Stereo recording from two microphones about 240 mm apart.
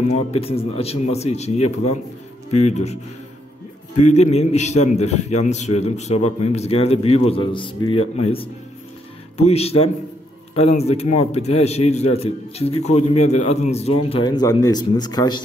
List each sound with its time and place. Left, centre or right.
0.3 s a man's voice: left